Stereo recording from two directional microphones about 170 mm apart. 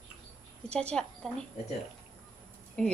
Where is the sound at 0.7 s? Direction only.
5° left (ahead or behind).